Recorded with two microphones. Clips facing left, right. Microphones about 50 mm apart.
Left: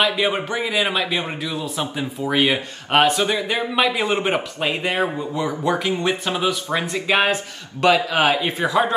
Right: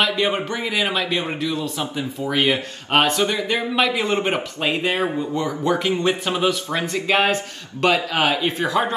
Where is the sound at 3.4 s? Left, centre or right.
Centre.